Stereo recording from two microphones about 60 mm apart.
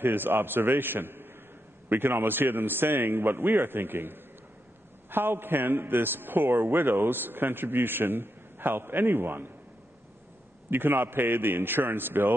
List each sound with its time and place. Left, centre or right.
0.0 s a man's voice: right
10.7 s a man's voice: right